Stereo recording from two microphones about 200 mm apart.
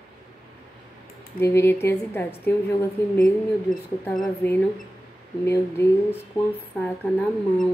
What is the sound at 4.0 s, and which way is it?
Speech, centre (ahead or behind).